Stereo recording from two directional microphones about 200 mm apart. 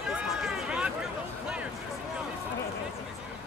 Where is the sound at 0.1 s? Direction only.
Centre (ahead or behind).